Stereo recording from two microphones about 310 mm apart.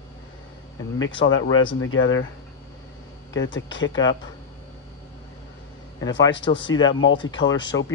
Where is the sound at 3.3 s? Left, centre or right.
Left.